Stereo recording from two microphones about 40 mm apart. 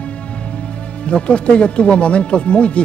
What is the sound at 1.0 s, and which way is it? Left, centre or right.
Speech, left.